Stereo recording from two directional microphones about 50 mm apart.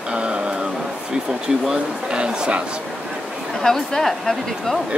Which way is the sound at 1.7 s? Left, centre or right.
Centre.